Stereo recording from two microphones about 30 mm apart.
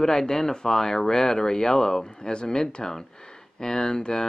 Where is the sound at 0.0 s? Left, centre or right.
Centre.